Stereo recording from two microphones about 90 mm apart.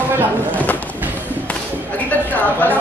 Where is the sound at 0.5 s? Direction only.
20° left (ahead or behind).